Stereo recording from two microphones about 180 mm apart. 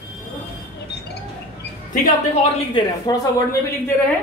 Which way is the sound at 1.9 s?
45° left (ahead or behind).